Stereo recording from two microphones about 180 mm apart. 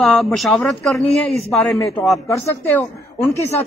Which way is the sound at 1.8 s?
15° left (ahead or behind).